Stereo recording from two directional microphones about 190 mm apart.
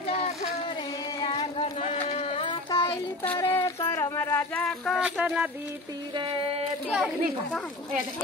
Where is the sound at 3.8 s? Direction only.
20° left (ahead or behind).